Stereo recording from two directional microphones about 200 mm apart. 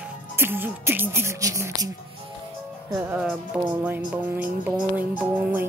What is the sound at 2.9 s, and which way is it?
Music, 5° right (ahead or behind).